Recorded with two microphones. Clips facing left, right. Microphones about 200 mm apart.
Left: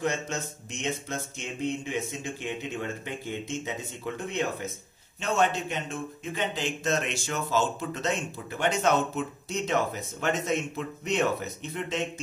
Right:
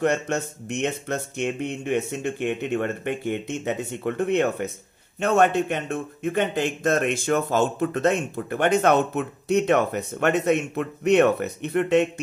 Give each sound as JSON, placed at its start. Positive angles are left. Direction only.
{"t": 0.0, "sound": "speech", "side_deg": -65}